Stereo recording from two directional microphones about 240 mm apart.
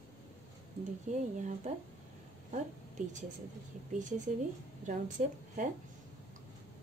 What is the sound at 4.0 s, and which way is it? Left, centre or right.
Speech, right.